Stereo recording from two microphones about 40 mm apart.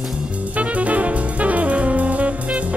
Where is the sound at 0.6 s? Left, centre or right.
Right.